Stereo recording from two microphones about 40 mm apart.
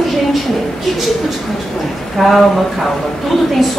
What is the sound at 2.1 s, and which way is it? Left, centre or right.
Speech, centre.